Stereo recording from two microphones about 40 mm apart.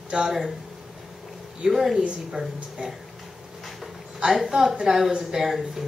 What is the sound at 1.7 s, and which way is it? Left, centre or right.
Speech, centre.